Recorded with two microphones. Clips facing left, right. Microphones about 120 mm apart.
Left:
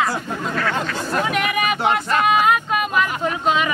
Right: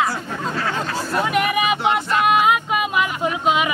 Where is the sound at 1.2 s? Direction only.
5° right (ahead or behind).